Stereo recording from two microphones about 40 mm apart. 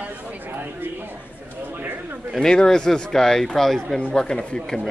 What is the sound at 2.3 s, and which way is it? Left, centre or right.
Speech, centre.